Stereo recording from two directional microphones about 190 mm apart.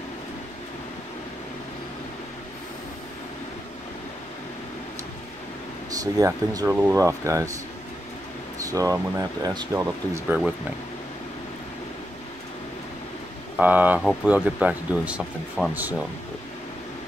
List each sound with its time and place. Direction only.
6.1 s speech: 15° right (ahead or behind)
8.6 s speech: 15° right (ahead or behind)
13.6 s speech: 10° right (ahead or behind)